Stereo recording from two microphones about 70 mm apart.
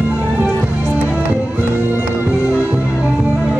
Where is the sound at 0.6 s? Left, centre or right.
Centre.